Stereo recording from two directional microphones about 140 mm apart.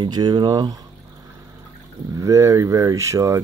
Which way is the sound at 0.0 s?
30° right (ahead or behind).